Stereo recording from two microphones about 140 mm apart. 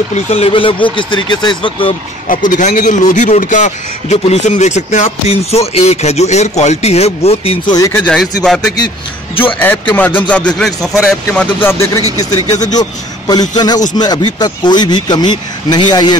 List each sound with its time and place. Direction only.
0.1 s speech: 45° left (ahead or behind)
2.2 s a man's voice: 70° left (ahead or behind); by 7.7 s 45° left (ahead or behind)
7.7 s speech: 25° left (ahead or behind)
9.6 s a man's voice: 15° left (ahead or behind)
11.6 s speech: 20° left (ahead or behind)